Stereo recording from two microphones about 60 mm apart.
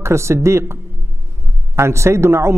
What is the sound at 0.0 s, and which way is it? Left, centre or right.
Speech, right.